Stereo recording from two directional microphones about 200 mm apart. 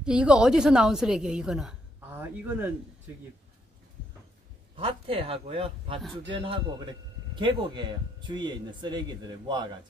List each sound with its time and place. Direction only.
0.0 s a woman's voice: 5° right (ahead or behind)
4.7 s speech: 25° right (ahead or behind)